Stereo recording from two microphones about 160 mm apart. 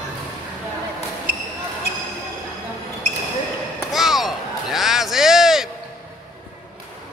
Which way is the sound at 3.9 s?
Centre (ahead or behind).